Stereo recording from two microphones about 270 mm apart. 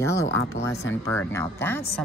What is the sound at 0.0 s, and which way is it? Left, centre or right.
Speech, centre.